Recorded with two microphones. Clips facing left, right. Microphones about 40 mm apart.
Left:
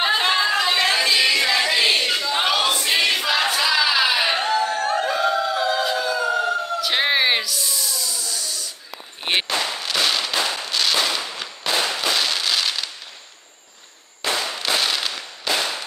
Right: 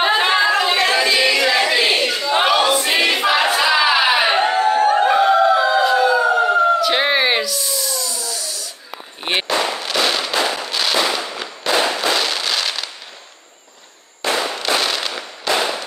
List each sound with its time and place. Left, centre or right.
0.0 s singing: centre
1.5 s a sound: centre
2.8 s choir: centre
5.9 s a sound: right
6.8 s a sound: centre
9.2 s firecracker: centre
9.5 s fireworks: right
9.9 s fireworks: centre
10.3 s firecracker: right
10.7 s firecracker: centre
12.0 s fireworks: centre
14.2 s fireworks: right
14.8 s fireworks: centre
15.5 s firecracker: right